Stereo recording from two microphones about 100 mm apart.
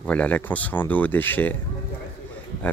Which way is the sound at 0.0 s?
15° left (ahead or behind).